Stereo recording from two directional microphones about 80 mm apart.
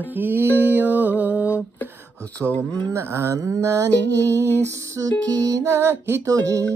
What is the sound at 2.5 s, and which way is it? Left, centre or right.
Music, left.